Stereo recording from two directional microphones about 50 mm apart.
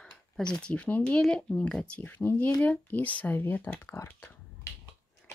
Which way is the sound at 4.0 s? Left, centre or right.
Left.